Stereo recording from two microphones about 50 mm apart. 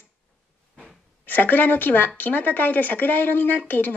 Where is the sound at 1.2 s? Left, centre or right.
Left.